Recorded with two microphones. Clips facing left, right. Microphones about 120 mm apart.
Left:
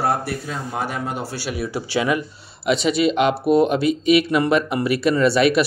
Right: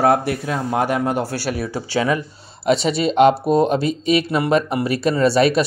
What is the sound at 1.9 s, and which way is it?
Speech, 35° right (ahead or behind).